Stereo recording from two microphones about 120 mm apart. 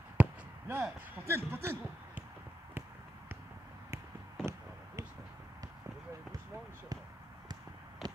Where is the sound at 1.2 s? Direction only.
20° right (ahead or behind).